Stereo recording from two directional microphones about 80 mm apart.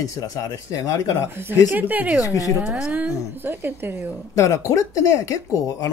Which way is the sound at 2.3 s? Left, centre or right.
Left.